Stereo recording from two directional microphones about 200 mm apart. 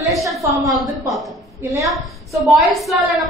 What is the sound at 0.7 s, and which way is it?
A woman's voice, centre (ahead or behind).